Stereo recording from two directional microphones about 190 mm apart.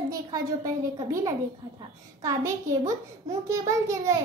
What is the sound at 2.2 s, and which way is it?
A child's voice, 15° right (ahead or behind).